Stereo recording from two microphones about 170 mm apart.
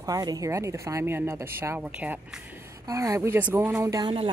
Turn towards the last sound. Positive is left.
turn(degrees=-30)  # may be behind; listen again after turning